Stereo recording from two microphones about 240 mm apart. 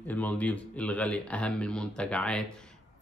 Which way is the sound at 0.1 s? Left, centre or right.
Centre.